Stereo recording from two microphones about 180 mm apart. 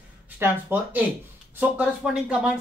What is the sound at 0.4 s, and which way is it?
Speech, 10° right (ahead or behind).